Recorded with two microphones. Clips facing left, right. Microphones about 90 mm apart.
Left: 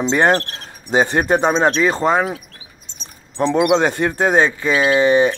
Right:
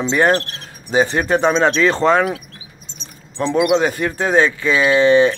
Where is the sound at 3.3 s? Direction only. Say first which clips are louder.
Left 1 dB; 30° left (ahead or behind).